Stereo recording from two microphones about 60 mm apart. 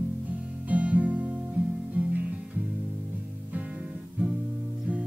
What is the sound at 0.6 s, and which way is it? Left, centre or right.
Music, right.